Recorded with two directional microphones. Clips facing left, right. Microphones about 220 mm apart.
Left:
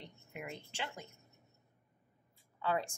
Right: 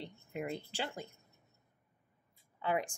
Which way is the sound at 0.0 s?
35° right (ahead or behind).